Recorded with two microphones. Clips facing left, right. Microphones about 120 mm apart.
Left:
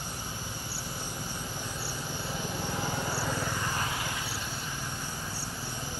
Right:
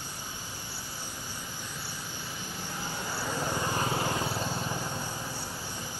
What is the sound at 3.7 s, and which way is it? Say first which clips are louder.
Vehicle: right 5 dB; 35° right (ahead or behind).